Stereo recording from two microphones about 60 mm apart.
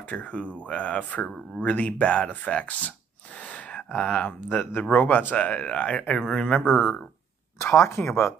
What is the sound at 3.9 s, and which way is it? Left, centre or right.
Speech, left.